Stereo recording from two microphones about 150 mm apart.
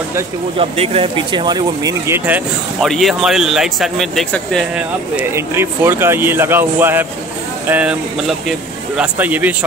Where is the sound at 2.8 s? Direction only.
Centre (ahead or behind).